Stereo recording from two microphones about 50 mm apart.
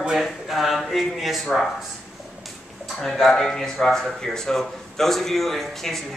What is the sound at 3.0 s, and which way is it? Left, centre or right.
Speech, centre.